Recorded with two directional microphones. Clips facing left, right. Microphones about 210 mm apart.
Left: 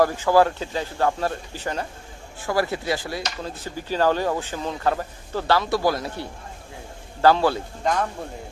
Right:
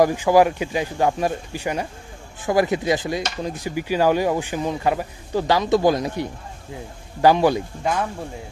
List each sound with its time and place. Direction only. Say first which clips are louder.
0.0 s speech: right 2 dB; 15° right (ahead or behind)